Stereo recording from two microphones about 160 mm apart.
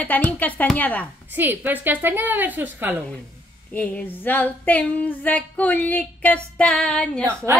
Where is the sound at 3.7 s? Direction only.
10° left (ahead or behind).